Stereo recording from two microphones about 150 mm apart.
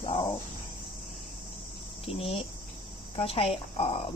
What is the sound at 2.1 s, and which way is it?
Speech, 40° left (ahead or behind).